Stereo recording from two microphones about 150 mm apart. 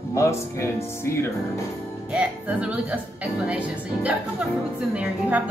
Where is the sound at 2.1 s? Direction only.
5° right (ahead or behind).